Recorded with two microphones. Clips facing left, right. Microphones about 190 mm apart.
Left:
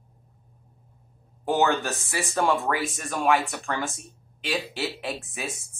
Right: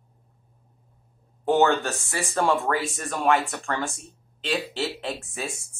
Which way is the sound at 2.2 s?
Centre (ahead or behind).